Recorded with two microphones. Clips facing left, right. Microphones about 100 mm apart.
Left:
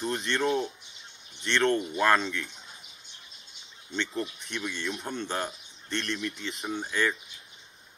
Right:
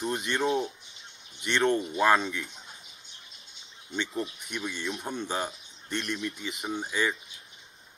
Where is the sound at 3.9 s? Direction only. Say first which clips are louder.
Even; 5° right (ahead or behind).